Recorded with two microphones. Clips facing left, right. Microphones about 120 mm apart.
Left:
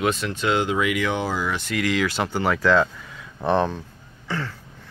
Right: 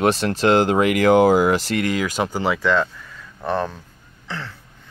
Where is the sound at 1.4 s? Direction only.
90° right.